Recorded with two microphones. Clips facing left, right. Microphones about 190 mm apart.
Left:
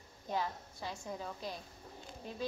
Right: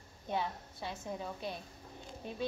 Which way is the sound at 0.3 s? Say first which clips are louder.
Right 1 dB; 20° right (ahead or behind).